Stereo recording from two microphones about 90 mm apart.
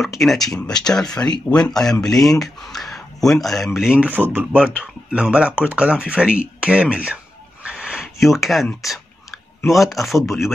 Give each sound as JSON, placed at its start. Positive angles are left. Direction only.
{"t": 0.2, "sound": "speech", "side_deg": 5}
{"t": 4.1, "sound": "speech", "side_deg": -20}
{"t": 7.6, "sound": "a sound", "side_deg": -10}
{"t": 8.8, "sound": "clicking", "side_deg": -5}
{"t": 9.7, "sound": "speech", "side_deg": 0}